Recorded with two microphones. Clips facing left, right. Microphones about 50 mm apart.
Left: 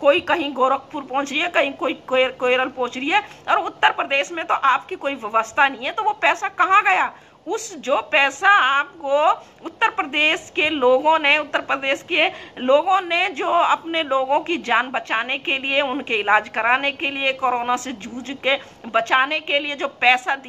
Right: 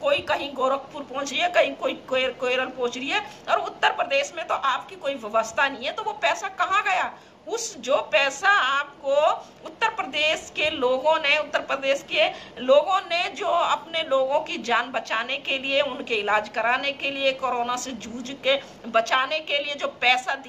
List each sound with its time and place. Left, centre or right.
0.0 s a woman's voice: left